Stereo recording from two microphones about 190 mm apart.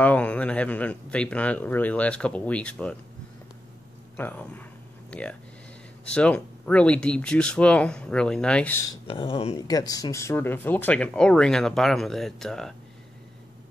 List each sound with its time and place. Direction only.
0.0 s speech: 5° left (ahead or behind)
4.2 s speech: 10° left (ahead or behind)
6.0 s speech: 5° left (ahead or behind)
8.9 s speech: 30° left (ahead or behind)
9.6 s speech: 20° left (ahead or behind); by 12.7 s centre (ahead or behind)